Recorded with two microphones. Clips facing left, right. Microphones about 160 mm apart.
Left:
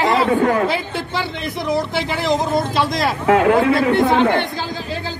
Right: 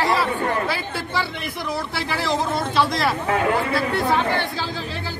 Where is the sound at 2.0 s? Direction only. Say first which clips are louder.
Left 4 dB; 20° left (ahead or behind).